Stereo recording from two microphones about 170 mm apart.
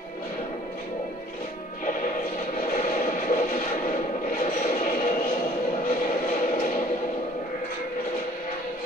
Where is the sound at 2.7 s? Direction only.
50° left (ahead or behind).